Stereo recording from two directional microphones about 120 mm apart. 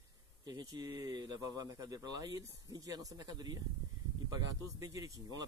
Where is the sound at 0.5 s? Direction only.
35° right (ahead or behind).